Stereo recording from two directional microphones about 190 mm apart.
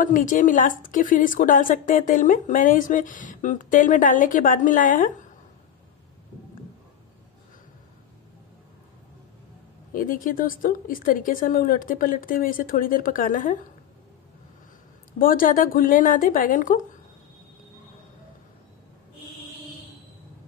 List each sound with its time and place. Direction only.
0.0 s a woman's voice: 45° left (ahead or behind)
9.9 s a woman's voice: 45° left (ahead or behind)
15.1 s a woman's voice: 45° left (ahead or behind)